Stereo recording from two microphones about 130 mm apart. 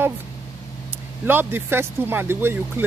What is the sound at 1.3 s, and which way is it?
Speech, 15° right (ahead or behind).